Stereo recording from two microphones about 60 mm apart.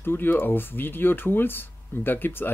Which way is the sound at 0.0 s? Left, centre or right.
Left.